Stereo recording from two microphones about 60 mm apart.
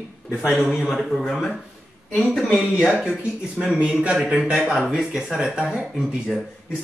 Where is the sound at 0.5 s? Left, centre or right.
Right.